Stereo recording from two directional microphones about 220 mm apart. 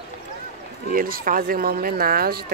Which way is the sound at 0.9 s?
40° right (ahead or behind).